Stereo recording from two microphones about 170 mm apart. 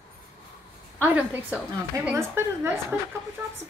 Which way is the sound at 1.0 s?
10° right (ahead or behind).